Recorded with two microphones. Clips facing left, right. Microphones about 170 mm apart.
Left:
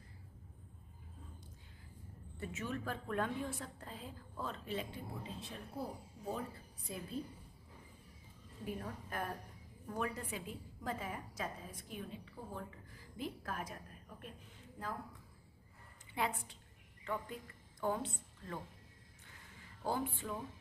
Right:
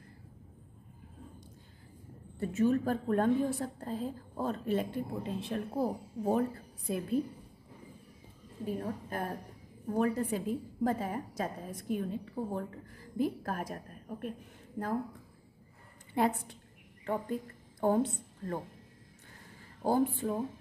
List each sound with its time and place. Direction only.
2.4 s a woman's voice: 40° right (ahead or behind); by 7.2 s 60° right (ahead or behind)
8.6 s a woman's voice: 35° right (ahead or behind)
16.2 s a woman's voice: 45° right (ahead or behind)
19.8 s a woman's voice: 45° right (ahead or behind)